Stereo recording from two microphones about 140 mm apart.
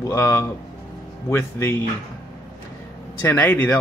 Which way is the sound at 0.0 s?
20° left (ahead or behind).